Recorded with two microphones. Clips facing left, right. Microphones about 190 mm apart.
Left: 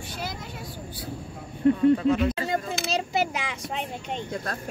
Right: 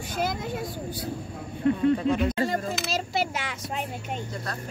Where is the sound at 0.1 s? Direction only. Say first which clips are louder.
Right 9 dB; 50° right (ahead or behind).